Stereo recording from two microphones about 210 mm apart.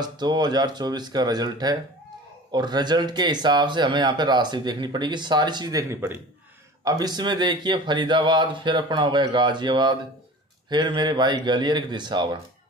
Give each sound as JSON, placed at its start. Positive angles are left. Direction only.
{"t": 0.0, "sound": "speech", "side_deg": -20}